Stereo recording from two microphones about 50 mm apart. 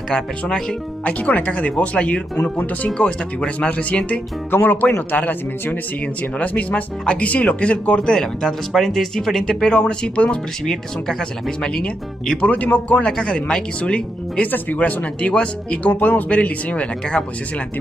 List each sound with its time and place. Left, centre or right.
0.1 s speech: centre
1.0 s speech: left
2.9 s speech: centre
4.5 s speech: left
8.1 s speech: centre
10.6 s speech: centre
11.6 s speech: left
14.4 s speech: left